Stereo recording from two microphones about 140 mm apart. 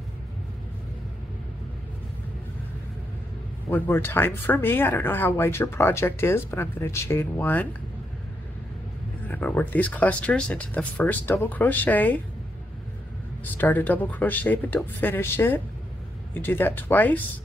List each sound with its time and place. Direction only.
3.7 s speech: 15° left (ahead or behind)
9.3 s speech: 10° left (ahead or behind)
13.6 s speech: 15° left (ahead or behind)